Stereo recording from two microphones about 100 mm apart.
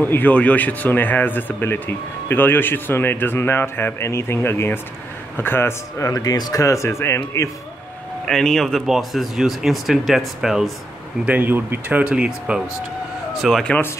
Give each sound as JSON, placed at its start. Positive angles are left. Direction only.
{"t": 0.0, "sound": "speech", "side_deg": 20}
{"t": 8.3, "sound": "speech", "side_deg": 5}
{"t": 11.2, "sound": "speech", "side_deg": -20}
{"t": 13.3, "sound": "speech", "side_deg": 0}